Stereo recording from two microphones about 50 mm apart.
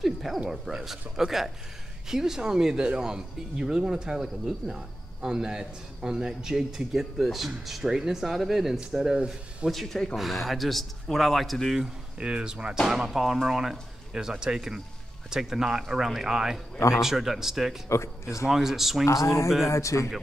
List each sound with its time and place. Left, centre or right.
0.0 s cricket: centre
0.5 s speech: centre
9.2 s speech: centre
9.7 s speech: centre
12.2 s speech: centre
17.8 s speech: left
18.5 s speech: centre
19.0 s speech: left